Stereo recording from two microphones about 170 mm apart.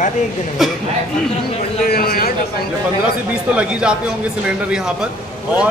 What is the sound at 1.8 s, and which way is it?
Speech, 60° left (ahead or behind).